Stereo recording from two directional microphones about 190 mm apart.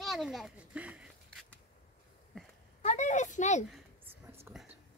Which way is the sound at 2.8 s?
40° left (ahead or behind).